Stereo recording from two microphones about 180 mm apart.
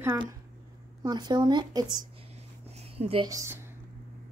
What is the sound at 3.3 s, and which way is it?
Speech, 15° right (ahead or behind).